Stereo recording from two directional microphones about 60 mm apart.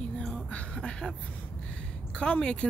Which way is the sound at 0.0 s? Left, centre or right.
Centre.